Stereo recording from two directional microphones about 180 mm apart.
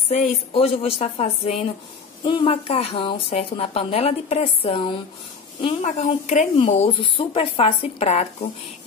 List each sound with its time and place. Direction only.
0.1 s a woman's voice: 35° left (ahead or behind)